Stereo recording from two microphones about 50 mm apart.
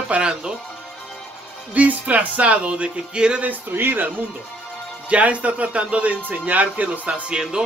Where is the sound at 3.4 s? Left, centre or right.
Right.